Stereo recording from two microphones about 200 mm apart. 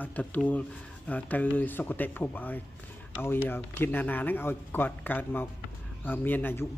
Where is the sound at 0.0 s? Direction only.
10° left (ahead or behind).